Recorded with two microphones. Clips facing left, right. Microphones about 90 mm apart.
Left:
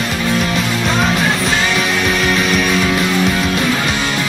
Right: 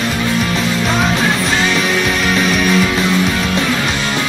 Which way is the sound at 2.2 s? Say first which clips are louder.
Even; centre (ahead or behind).